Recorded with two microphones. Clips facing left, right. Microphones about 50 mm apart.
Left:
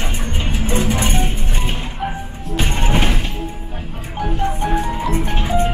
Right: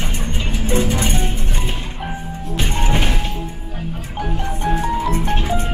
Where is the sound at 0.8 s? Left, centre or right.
Centre.